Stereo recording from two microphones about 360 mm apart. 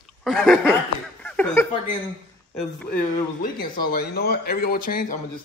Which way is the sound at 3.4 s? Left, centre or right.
Left.